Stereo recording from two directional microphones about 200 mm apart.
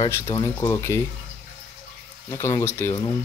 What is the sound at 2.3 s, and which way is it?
Speech, 15° left (ahead or behind).